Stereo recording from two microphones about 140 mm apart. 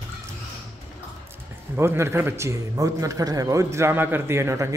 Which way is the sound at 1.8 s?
20° right (ahead or behind).